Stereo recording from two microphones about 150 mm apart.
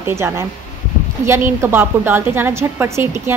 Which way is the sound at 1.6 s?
15° right (ahead or behind).